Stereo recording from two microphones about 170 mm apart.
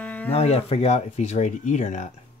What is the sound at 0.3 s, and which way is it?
Speech, 35° left (ahead or behind).